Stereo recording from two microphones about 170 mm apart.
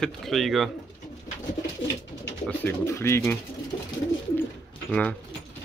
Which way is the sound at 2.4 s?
10° left (ahead or behind).